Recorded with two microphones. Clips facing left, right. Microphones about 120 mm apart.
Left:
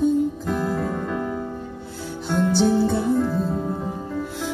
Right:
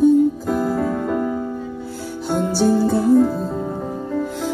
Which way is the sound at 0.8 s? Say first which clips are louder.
Right 5 dB; 5° right (ahead or behind).